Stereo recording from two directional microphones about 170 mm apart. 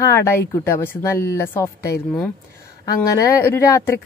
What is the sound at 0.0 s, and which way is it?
Speech, 15° left (ahead or behind).